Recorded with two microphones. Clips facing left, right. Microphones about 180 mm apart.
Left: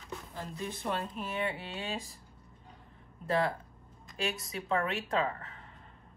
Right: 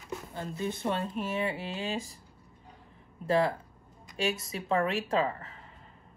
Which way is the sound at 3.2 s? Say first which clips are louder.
Right 4 dB; 20° right (ahead or behind).